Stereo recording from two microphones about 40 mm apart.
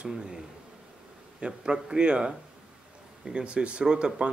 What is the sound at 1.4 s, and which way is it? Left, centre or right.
Speech, right.